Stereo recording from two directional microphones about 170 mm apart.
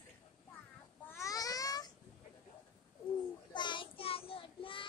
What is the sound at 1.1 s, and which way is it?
Babbling, 20° left (ahead or behind).